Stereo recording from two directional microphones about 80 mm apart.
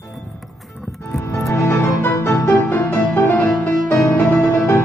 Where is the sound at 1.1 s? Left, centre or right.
Left.